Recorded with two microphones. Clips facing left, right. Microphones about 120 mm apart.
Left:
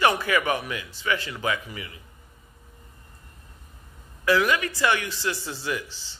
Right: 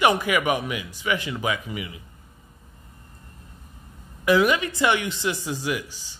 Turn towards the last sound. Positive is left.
turn(degrees=-15)  # may be behind; listen again after turning